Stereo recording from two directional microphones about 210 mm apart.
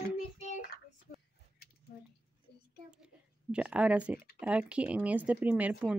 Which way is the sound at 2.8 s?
5° right (ahead or behind).